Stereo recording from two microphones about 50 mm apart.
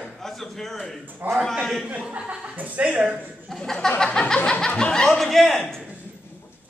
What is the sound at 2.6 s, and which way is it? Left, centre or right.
Speech, right.